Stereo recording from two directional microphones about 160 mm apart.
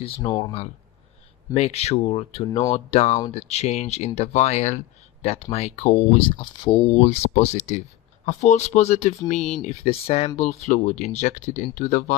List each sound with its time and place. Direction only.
0.0 s speech: 30° left (ahead or behind)
1.5 s speech: 40° left (ahead or behind)
6.9 s speech: 45° left (ahead or behind)